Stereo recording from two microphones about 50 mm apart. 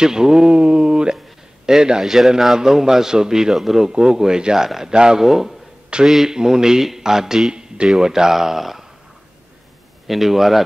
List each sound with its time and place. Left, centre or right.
0.0 s a sound: centre
1.7 s a man's voice: centre
10.0 s speech: centre